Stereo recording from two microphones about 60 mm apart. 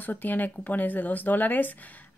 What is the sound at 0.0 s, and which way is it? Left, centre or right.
Speech, left.